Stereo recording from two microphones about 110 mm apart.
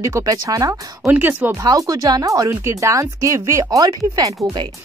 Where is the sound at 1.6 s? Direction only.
30° right (ahead or behind).